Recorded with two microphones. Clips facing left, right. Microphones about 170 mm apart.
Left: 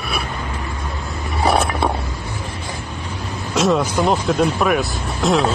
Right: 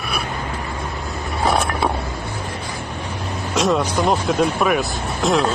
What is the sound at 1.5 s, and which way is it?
Mechanisms, centre (ahead or behind).